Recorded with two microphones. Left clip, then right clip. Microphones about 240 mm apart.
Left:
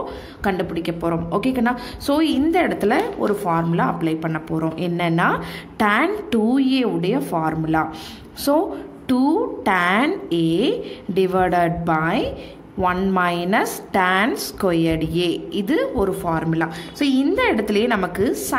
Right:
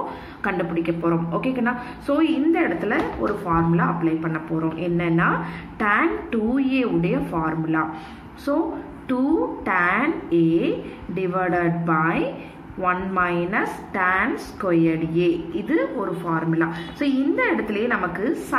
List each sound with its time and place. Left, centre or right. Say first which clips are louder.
0.4 s a woman's voice: left 1 dB; left
9.7 s a woman's voice: left 2 dB; left
11.1 s a woman's voice: left 5 dB; left